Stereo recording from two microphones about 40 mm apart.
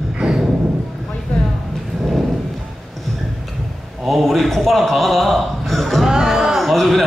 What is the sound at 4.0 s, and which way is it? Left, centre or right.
A man's voice, centre.